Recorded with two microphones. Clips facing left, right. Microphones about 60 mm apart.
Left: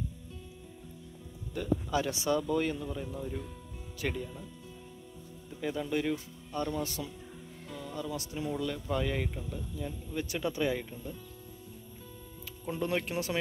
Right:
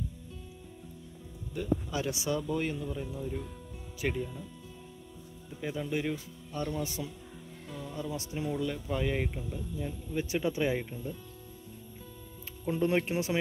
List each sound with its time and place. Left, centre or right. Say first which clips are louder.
1.5 s speech: left 1 dB; centre
5.6 s speech: left 1 dB; centre
8.2 s speech: right 1 dB; right
8.5 s speech: even; centre
10.1 s speech: right 3 dB; centre
12.6 s speech: right 4 dB; right